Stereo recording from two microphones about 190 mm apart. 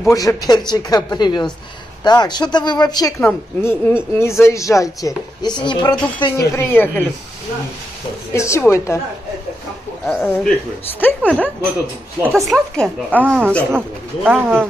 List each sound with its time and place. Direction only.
0.0 s speech: 20° left (ahead or behind)
8.3 s speech: 15° left (ahead or behind)
10.0 s speech: 5° left (ahead or behind)
12.2 s speech: 10° right (ahead or behind)
12.4 s speech: 5° left (ahead or behind)
13.2 s speech: 10° right (ahead or behind)